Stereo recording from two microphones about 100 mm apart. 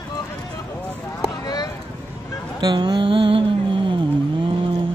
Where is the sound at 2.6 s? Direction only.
45° right (ahead or behind).